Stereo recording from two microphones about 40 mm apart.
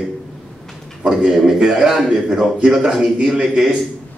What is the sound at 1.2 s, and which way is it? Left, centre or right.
A man's voice, centre.